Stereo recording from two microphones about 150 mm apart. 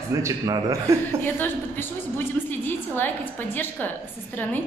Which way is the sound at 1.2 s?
15° left (ahead or behind).